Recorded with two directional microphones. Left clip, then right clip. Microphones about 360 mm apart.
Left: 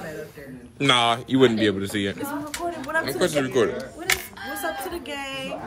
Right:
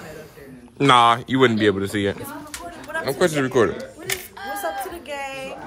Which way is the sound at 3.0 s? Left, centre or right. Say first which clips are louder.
Right 7 dB; centre.